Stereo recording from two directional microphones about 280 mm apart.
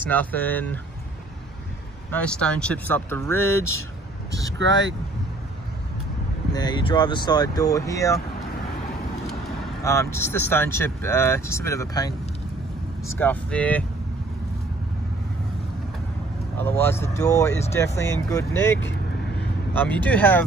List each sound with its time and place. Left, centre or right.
0.0 s speech: centre
2.0 s speech: centre
3.3 s speech: right
6.5 s speech: centre
9.8 s speech: centre
13.2 s speech: centre
16.5 s speech: centre